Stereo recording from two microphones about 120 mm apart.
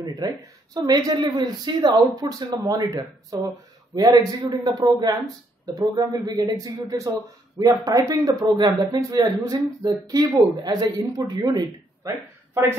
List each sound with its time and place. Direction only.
0.2 s speech: 30° right (ahead or behind)